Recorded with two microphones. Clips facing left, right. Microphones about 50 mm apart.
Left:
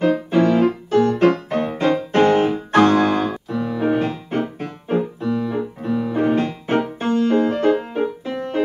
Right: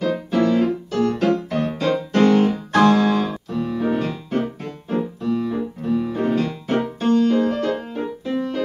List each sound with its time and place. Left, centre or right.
0.0 s music: left